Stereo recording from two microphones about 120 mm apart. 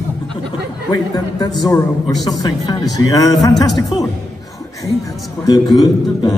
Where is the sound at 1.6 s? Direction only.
30° left (ahead or behind).